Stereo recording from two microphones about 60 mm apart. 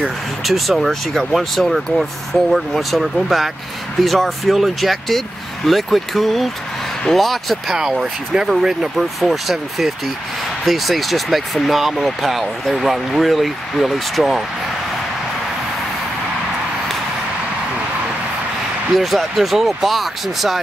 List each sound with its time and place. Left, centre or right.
0.5 s speech: centre
7.7 s speech: centre
18.9 s speech: centre